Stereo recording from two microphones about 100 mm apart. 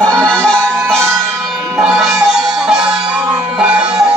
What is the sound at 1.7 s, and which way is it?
Music, centre (ahead or behind).